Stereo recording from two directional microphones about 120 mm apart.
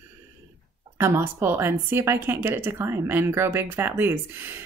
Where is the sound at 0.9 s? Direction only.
20° right (ahead or behind).